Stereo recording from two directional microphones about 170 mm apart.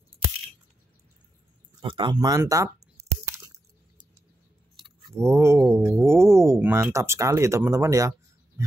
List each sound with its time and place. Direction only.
1.8 s speech: 30° right (ahead or behind)
5.1 s speech: 15° right (ahead or behind)